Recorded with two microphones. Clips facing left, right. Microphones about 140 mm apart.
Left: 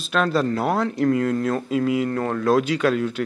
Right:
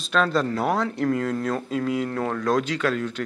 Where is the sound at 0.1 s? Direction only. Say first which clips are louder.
Left 1 dB; 5° left (ahead or behind).